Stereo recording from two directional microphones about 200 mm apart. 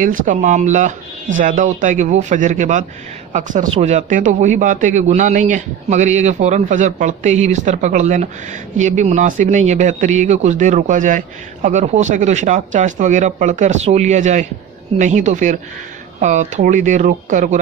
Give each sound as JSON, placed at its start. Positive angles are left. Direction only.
{"t": 0.0, "sound": "speech", "side_deg": -40}